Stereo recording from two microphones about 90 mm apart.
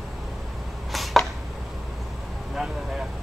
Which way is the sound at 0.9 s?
Centre (ahead or behind).